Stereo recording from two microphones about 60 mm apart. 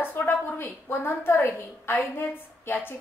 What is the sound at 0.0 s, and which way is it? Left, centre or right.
A woman's voice, left.